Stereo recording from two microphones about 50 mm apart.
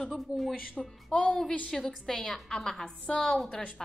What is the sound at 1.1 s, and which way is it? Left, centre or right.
A woman's voice, centre.